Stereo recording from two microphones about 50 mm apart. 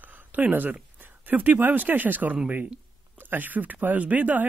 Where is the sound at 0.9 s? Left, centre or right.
Right.